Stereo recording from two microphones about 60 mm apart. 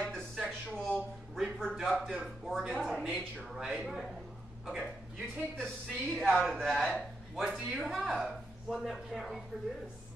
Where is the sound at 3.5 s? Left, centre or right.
Centre.